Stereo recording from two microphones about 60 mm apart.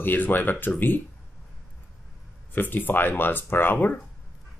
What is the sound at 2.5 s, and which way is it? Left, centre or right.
Speech, left.